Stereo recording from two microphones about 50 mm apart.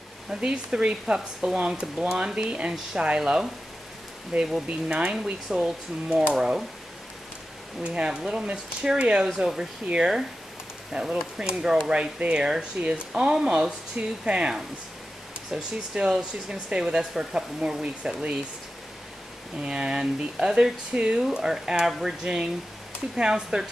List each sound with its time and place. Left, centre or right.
0.3 s speech: centre
7.8 s speech: centre
9.3 s speech: centre
10.9 s speech: centre
15.5 s speech: centre
19.6 s speech: centre